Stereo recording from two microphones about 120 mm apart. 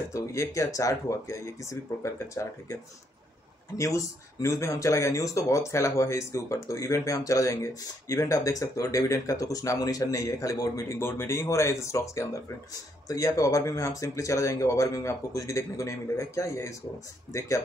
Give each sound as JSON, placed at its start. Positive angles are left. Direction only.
{"t": 0.1, "sound": "speech", "side_deg": 25}